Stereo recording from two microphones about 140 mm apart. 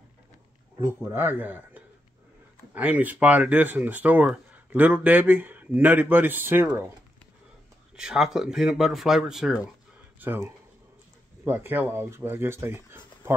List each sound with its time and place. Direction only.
0.8 s speech: 15° right (ahead or behind)
7.9 s speech: 5° right (ahead or behind)
10.2 s speech: 15° right (ahead or behind)